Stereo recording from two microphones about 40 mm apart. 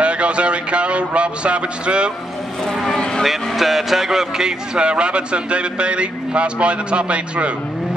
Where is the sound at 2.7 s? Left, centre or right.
Centre.